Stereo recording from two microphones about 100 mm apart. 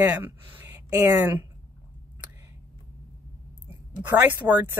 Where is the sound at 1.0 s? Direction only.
25° right (ahead or behind).